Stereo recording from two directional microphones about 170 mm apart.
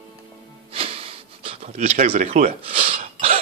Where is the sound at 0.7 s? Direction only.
35° right (ahead or behind).